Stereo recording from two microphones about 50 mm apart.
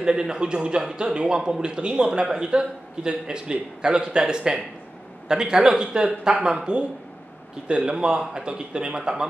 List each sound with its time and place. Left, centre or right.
0.0 s a man's voice: centre